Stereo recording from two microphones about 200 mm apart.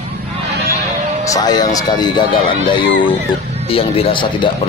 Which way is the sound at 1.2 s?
20° left (ahead or behind).